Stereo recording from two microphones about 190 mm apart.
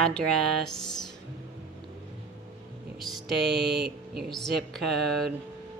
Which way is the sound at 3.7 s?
60° right (ahead or behind).